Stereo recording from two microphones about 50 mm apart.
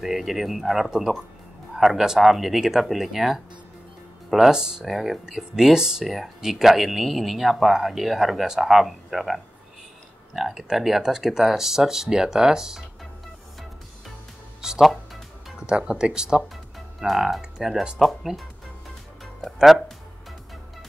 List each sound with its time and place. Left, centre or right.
0.0 s speech: centre
14.6 s music: centre
15.6 s speech: centre
17.0 s speech: centre
19.4 s speech: centre